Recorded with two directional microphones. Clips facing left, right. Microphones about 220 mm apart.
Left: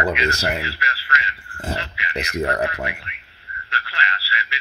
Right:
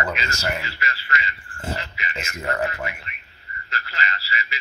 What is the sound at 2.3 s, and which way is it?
Speech, 35° left (ahead or behind).